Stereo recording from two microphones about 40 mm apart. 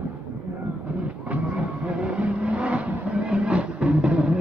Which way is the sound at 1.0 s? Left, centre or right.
Right.